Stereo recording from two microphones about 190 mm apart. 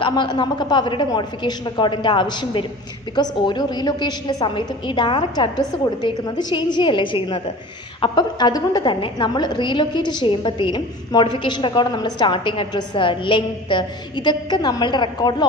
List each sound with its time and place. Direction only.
0.0 s a woman's voice: 25° left (ahead or behind)